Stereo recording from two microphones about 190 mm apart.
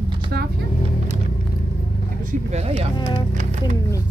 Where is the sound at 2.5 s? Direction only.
35° right (ahead or behind).